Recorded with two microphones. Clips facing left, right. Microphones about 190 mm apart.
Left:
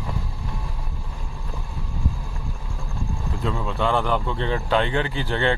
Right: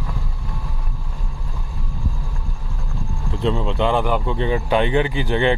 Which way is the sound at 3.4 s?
25° right (ahead or behind).